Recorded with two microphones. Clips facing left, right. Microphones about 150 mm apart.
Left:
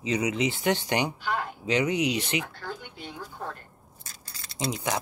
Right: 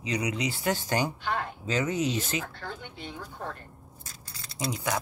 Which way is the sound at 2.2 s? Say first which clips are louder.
Left 2 dB; 45° right (ahead or behind).